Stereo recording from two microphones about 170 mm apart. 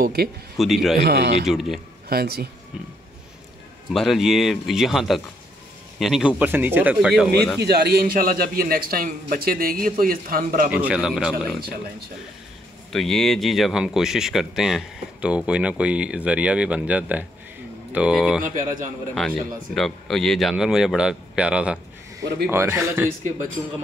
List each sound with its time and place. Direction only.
0.0 s speech: 65° right (ahead or behind)
0.6 s speech: centre (ahead or behind)
0.9 s speech: 70° right (ahead or behind)
1.4 s speech: centre (ahead or behind)
2.0 s speech: 65° right (ahead or behind)
3.9 s speech: centre (ahead or behind)
7.5 s a man's voice: 75° right (ahead or behind); by 10.7 s 60° right (ahead or behind)
10.7 s speech: 5° right (ahead or behind)
12.9 s speech: centre (ahead or behind); by 23.0 s 15° right (ahead or behind)